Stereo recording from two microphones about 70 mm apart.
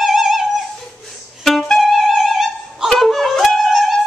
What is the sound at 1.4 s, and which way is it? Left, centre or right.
Music, centre.